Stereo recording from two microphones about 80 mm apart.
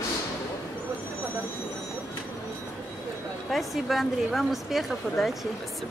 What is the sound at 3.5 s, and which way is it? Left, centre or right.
A woman's voice, centre.